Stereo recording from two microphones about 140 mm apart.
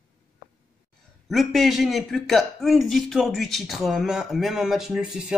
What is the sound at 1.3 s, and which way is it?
A man's voice, centre (ahead or behind).